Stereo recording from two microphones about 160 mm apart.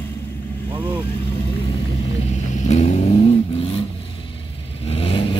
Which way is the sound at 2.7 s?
50° left (ahead or behind).